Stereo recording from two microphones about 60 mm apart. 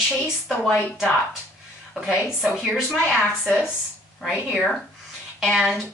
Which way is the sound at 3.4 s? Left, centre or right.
Centre.